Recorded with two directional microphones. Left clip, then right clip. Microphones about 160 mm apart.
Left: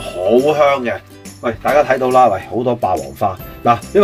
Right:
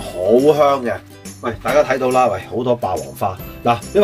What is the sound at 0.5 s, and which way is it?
Speech, 20° right (ahead or behind).